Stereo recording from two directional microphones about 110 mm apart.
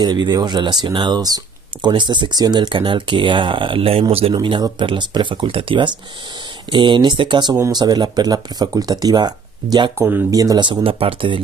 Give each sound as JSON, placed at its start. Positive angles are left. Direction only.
{"t": 0.0, "sound": "speech", "side_deg": -40}
{"t": 4.3, "sound": "speech", "side_deg": -45}
{"t": 9.9, "sound": "speech", "side_deg": -20}
{"t": 10.3, "sound": "speech", "side_deg": -30}
{"t": 10.6, "sound": "speech", "side_deg": -50}